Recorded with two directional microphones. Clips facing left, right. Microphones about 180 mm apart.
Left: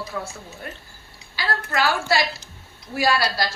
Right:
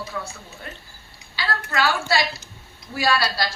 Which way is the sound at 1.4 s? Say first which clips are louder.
Left 1 dB; 45° left (ahead or behind).